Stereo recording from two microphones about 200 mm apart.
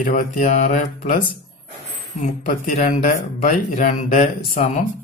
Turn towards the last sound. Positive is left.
turn(degrees=40)  # may be behind; listen again after turning